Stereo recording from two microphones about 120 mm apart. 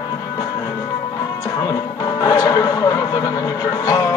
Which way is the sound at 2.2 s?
30° left (ahead or behind).